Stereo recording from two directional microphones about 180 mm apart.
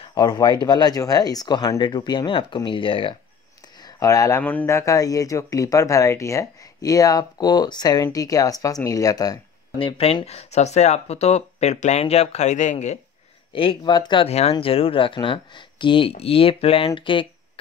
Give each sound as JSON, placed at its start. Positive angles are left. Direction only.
{"t": 0.0, "sound": "speech", "side_deg": 20}
{"t": 3.8, "sound": "speech", "side_deg": 20}
{"t": 13.5, "sound": "speech", "side_deg": 30}